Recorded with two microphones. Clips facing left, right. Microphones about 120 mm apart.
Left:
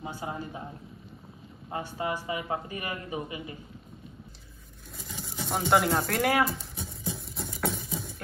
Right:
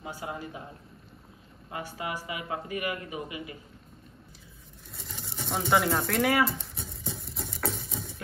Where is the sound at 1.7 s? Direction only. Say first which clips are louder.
Left 3 dB; 30° left (ahead or behind).